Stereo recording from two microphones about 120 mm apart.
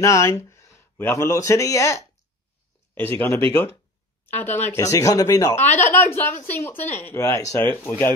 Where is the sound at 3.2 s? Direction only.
20° left (ahead or behind).